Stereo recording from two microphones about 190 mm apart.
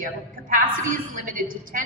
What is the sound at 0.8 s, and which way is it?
Speech, 45° right (ahead or behind).